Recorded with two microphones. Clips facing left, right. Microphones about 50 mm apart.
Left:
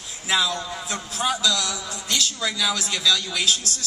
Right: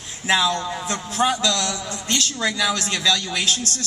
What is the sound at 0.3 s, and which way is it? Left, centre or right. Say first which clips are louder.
A man's voice: right 4 dB; right.